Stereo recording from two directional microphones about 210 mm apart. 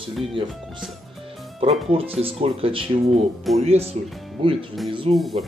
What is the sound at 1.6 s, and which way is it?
Speech, 25° right (ahead or behind).